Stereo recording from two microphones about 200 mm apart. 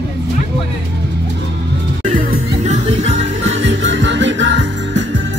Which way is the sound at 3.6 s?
65° right (ahead or behind).